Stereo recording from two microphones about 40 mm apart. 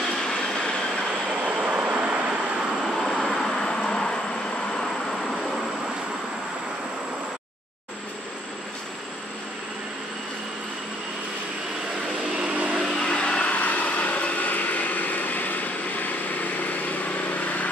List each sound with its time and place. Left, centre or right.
1.4 s vehicle: right
2.9 s vehicle: centre
12.9 s vehicle: left